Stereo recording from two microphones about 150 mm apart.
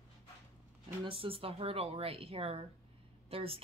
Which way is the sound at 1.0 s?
35° right (ahead or behind).